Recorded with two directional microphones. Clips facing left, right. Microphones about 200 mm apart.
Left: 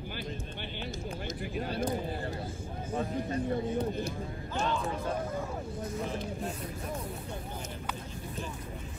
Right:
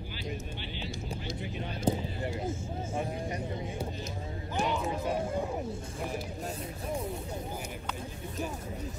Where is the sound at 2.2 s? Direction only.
20° right (ahead or behind).